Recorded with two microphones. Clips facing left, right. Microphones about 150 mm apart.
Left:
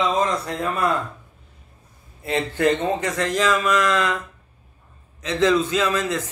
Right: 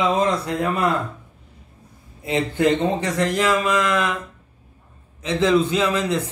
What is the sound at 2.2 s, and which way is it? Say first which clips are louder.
Speech: right 1 dB; 15° right (ahead or behind).